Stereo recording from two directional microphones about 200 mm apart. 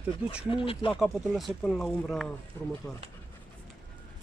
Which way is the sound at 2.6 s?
10° left (ahead or behind).